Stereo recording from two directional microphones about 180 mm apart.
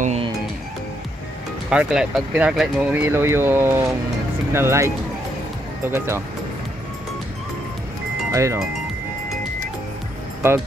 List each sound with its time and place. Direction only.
0.0 s music: 35° right (ahead or behind)
1.7 s speech: 5° right (ahead or behind)
8.3 s speech: 15° right (ahead or behind)